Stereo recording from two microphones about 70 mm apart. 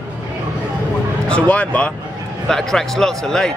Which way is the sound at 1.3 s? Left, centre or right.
Centre.